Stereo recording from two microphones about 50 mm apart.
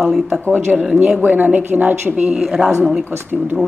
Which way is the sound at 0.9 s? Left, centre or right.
Centre.